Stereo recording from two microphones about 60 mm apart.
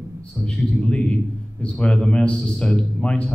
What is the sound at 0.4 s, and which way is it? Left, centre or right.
Speech, centre.